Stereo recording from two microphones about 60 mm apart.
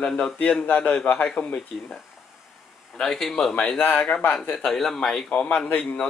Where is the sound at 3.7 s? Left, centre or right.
Left.